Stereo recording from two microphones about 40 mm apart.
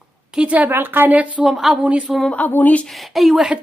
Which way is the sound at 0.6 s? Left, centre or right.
Right.